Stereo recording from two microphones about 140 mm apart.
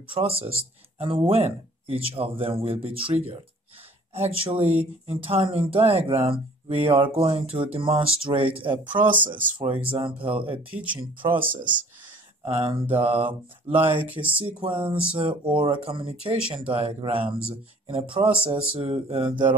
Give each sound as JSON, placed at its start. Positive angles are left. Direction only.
{"t": 0.1, "sound": "speech", "side_deg": -40}
{"t": 11.4, "sound": "speech", "side_deg": -70}
{"t": 12.4, "sound": "speech", "side_deg": -45}